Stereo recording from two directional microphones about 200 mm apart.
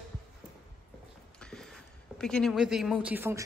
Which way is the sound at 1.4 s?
5° left (ahead or behind).